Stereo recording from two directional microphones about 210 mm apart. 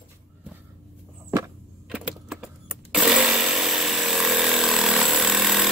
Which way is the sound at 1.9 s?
5° right (ahead or behind).